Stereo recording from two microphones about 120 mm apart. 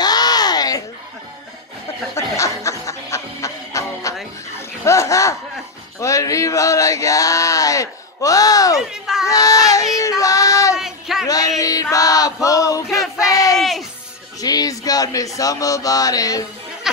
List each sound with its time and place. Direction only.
0.0 s a sound: 35° left (ahead or behind)
2.1 s music: 25° left (ahead or behind)
4.6 s laughter: 25° left (ahead or behind)
5.9 s speech: 25° left (ahead or behind)
8.7 s speech: 5° right (ahead or behind)
9.3 s child singing: 30° left (ahead or behind)
10.8 s a sound: 5° right (ahead or behind)
11.2 s male singing: 30° left (ahead or behind)
12.9 s a sound: 30° left (ahead or behind)
13.6 s music: centre (ahead or behind)
14.4 s music: 30° left (ahead or behind)
15.3 s speech: 30° left (ahead or behind)
16.8 s music: 5° right (ahead or behind)